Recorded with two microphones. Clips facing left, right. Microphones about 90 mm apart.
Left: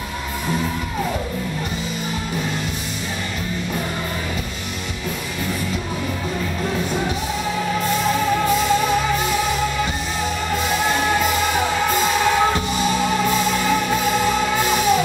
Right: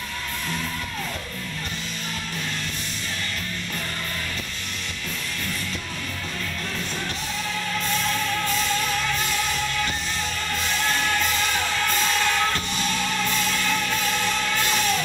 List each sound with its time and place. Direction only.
7.5 s music: 15° left (ahead or behind)